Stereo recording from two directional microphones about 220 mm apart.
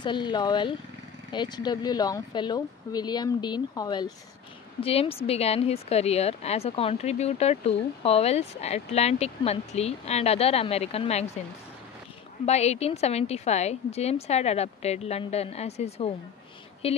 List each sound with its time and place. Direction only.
0.0 s speech: 20° left (ahead or behind)
12.4 s speech: 30° left (ahead or behind)